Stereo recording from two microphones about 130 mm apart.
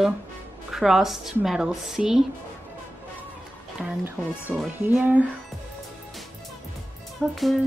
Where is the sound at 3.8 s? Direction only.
10° right (ahead or behind).